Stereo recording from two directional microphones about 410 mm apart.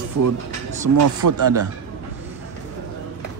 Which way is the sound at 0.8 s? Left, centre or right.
Right.